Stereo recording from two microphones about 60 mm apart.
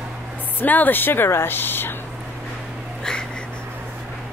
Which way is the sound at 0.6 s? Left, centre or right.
Left.